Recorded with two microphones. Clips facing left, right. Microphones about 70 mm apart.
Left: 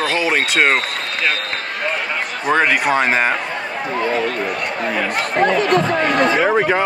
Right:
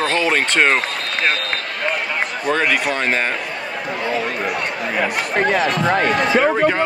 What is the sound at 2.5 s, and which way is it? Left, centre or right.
Speech, centre.